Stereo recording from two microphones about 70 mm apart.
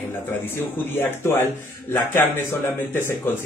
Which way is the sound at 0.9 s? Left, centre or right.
Left.